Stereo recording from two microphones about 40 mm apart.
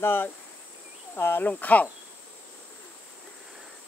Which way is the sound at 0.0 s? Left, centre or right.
Left.